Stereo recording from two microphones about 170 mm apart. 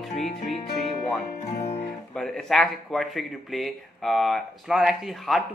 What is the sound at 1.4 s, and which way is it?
Music, 40° left (ahead or behind).